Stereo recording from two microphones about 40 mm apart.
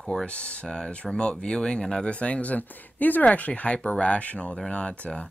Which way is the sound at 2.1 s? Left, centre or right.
Left.